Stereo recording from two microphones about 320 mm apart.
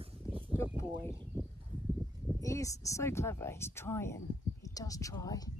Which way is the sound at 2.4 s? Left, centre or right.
Centre.